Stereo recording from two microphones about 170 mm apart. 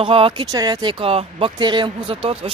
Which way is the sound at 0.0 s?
30° right (ahead or behind).